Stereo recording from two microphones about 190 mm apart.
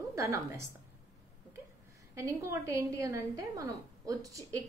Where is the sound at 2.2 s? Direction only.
15° right (ahead or behind).